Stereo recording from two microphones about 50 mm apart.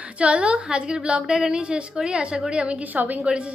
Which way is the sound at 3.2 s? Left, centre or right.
Right.